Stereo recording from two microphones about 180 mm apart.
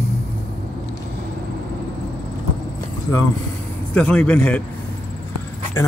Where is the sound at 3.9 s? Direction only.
5° left (ahead or behind).